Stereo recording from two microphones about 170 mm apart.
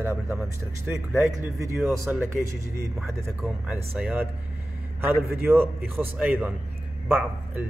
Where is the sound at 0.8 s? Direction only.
10° right (ahead or behind).